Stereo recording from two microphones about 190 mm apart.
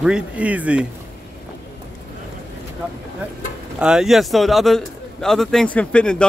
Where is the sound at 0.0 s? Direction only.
5° right (ahead or behind).